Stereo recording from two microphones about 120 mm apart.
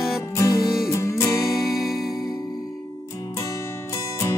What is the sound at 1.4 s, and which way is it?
Music, centre (ahead or behind).